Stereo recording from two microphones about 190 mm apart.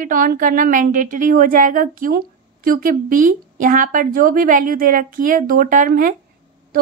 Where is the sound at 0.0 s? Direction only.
45° right (ahead or behind).